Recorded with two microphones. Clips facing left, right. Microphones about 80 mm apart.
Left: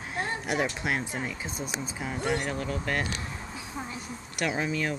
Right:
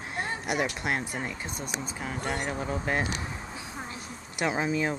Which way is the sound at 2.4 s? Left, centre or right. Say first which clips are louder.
Even; centre.